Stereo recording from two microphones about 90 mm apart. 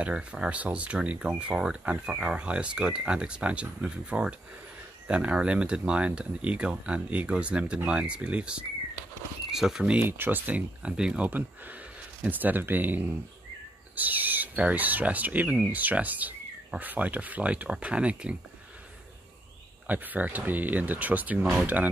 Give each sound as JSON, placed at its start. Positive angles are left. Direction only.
{"t": 0.0, "sound": "speech", "side_deg": -10}
{"t": 10.0, "sound": "speech", "side_deg": -25}
{"t": 19.9, "sound": "speech", "side_deg": -20}